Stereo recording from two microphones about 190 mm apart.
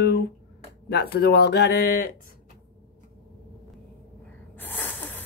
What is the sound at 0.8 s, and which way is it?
Speech, 60° left (ahead or behind).